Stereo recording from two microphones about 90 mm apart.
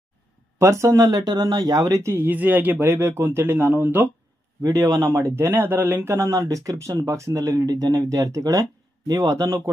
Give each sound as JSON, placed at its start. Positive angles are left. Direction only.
{"t": 0.6, "sound": "speech", "side_deg": -35}
{"t": 4.6, "sound": "speech", "side_deg": -35}
{"t": 6.1, "sound": "speech", "side_deg": -35}